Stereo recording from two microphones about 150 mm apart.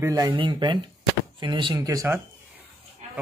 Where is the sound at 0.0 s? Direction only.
25° right (ahead or behind).